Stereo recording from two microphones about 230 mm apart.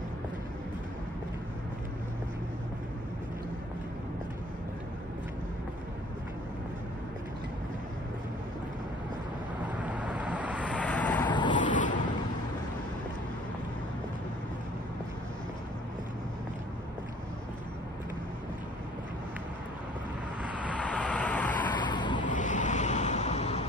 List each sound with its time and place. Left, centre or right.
9.8 s vehicle: centre
10.7 s vehicle: centre
11.2 s a sound: centre
11.5 s a sound: left
20.6 s vehicle: centre
21.7 s vehicle: centre
22.3 s waves: left